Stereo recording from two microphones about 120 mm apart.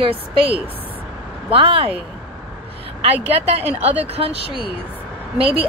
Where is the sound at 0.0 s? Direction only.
50° right (ahead or behind).